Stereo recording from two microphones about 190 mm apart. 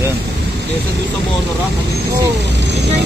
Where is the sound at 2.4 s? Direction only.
65° right (ahead or behind).